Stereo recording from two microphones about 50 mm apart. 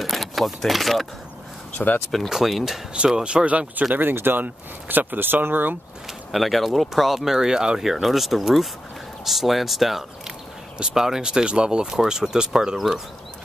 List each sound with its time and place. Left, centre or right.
0.0 s vehicle: centre
2.2 s speech: centre
3.3 s speech: right
3.9 s speech: right
6.3 s speech: centre